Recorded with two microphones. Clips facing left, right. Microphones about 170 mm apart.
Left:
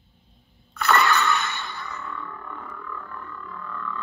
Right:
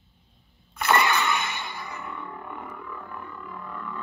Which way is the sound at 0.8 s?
10° right (ahead or behind).